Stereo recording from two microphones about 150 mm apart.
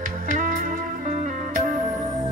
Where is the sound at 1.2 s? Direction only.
55° right (ahead or behind).